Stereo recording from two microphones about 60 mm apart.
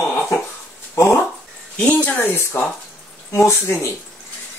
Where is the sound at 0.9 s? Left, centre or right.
Left.